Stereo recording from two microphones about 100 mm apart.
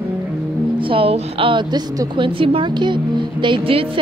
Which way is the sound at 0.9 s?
65° right (ahead or behind).